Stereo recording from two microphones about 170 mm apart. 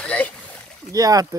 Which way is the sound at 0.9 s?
20° right (ahead or behind).